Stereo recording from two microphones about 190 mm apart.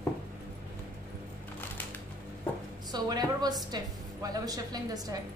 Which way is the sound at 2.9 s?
20° right (ahead or behind).